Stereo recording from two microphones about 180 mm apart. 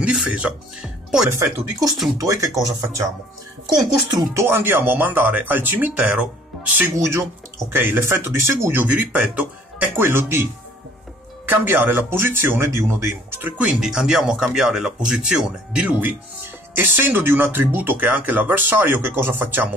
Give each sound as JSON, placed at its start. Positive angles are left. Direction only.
{"t": 0.0, "sound": "speech", "side_deg": -5}
{"t": 1.3, "sound": "speech", "side_deg": -20}
{"t": 4.1, "sound": "speech", "side_deg": -15}
{"t": 11.4, "sound": "speech", "side_deg": -10}